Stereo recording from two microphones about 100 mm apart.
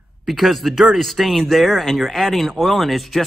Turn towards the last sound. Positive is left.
turn(degrees=0)  # may be behind; listen again after turning